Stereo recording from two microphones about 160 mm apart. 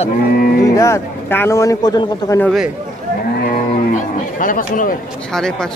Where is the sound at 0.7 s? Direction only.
20° left (ahead or behind).